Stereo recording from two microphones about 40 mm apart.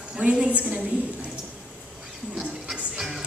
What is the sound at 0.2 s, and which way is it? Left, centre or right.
Speech, right.